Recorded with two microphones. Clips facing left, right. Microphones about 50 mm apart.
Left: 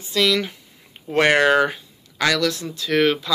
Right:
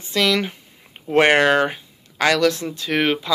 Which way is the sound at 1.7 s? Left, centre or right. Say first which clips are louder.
Right 1 dB; right.